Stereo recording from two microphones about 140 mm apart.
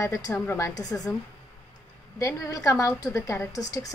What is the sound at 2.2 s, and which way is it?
A woman's voice, 25° left (ahead or behind).